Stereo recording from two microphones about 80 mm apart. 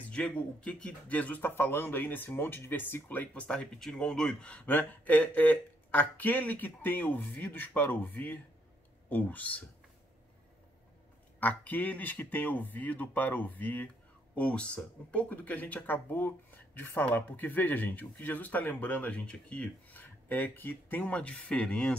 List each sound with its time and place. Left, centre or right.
0.0 s speech: centre
11.3 s speech: centre